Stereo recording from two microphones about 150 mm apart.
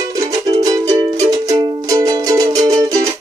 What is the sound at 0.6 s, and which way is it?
Music, 25° right (ahead or behind).